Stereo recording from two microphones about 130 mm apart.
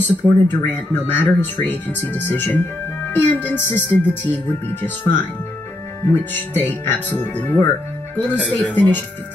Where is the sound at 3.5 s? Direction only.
15° left (ahead or behind).